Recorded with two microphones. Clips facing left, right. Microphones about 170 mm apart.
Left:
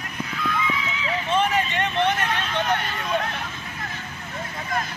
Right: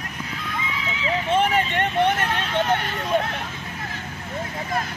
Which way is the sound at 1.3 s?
55° right (ahead or behind).